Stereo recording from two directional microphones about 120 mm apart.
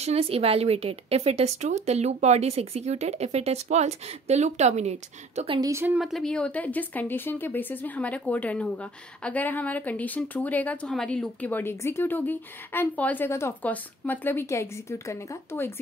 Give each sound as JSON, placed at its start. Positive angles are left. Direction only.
{"t": 0.0, "sound": "speech", "side_deg": -55}
{"t": 5.7, "sound": "speech", "side_deg": -20}
{"t": 5.9, "sound": "speech", "side_deg": 0}